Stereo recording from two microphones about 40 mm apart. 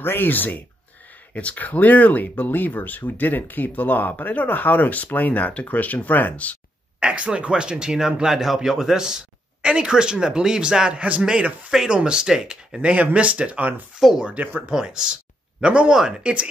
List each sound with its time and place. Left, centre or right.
0.0 s speech: left
1.3 s speech: left
7.0 s speech: right
8.3 s a man's voice: centre
12.9 s speech: right
14.0 s a man's voice: centre
14.7 s speech: right